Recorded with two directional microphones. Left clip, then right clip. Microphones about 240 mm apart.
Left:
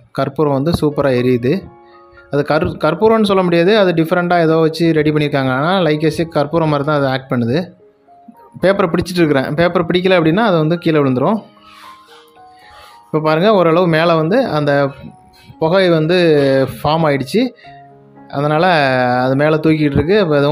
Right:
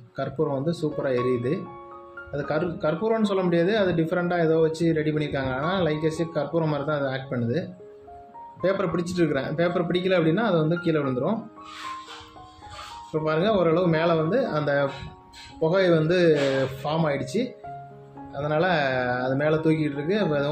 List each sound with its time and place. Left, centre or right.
0.1 s speech: left
13.1 s speech: left